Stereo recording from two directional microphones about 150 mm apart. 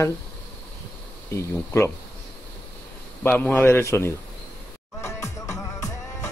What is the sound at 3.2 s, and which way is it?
Speech, 10° left (ahead or behind).